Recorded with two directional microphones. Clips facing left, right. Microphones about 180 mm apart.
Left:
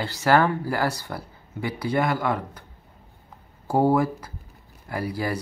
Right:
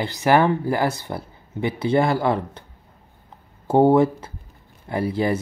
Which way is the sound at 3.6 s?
25° right (ahead or behind).